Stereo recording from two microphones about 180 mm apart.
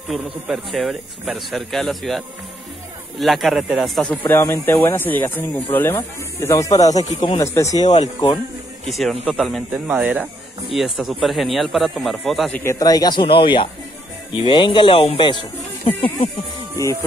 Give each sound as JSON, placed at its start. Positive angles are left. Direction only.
{"t": 0.1, "sound": "speech", "side_deg": -5}
{"t": 7.8, "sound": "speech", "side_deg": 40}
{"t": 8.9, "sound": "speech", "side_deg": 0}
{"t": 12.7, "sound": "speech", "side_deg": 20}